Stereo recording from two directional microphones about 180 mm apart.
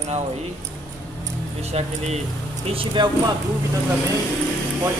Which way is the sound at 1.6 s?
35° right (ahead or behind).